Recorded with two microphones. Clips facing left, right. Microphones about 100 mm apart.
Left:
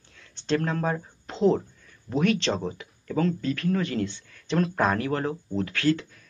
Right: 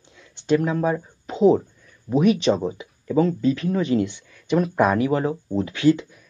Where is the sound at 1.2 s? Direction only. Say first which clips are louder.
Right 6 dB; 10° right (ahead or behind).